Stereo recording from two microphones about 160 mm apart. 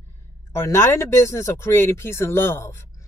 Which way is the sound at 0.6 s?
15° left (ahead or behind).